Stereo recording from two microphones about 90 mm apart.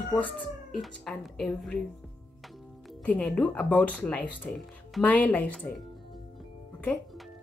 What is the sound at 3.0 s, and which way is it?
Speech, 15° left (ahead or behind).